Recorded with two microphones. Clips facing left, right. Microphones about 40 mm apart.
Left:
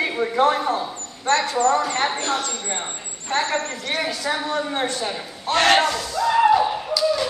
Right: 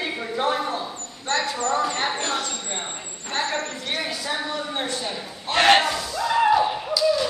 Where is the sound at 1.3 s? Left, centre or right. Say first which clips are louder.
Left 6 dB; left.